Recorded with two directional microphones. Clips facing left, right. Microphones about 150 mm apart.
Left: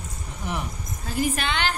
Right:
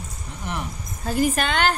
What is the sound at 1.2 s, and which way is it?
Speech, 45° right (ahead or behind).